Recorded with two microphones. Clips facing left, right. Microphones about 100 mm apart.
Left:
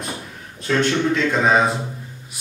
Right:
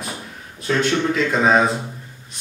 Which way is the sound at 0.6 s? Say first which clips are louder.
Even; 5° right (ahead or behind).